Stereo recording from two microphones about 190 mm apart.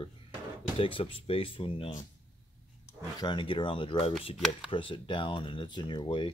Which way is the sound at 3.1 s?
25° left (ahead or behind).